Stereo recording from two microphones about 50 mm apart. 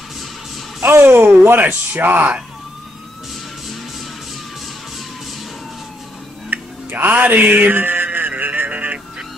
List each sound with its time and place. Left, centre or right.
0.8 s speech: right
6.5 s music: right